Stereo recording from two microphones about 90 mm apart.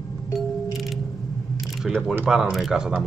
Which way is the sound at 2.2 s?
5° right (ahead or behind).